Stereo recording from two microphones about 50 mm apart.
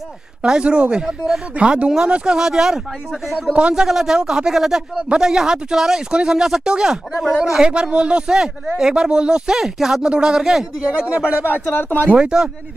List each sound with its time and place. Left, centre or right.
0.4 s speech: right
1.0 s speech: centre
1.6 s speech: right
9.6 s speech: centre
11.1 s speech: right
11.7 s speech: left
12.2 s speech: centre